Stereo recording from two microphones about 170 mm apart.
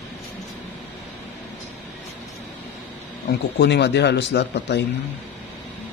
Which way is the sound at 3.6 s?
85° left.